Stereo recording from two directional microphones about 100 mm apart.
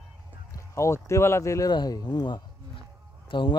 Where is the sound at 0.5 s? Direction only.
30° left (ahead or behind).